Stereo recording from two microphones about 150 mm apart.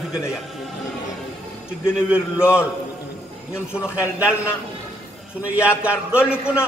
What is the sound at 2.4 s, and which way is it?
Speech, 15° left (ahead or behind).